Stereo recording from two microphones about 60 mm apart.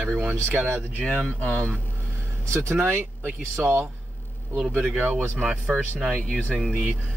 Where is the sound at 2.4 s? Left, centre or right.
Right.